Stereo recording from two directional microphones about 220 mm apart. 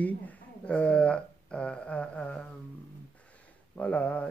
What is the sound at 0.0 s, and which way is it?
Speech, 5° left (ahead or behind).